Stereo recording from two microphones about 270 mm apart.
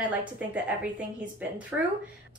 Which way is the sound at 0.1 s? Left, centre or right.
Centre.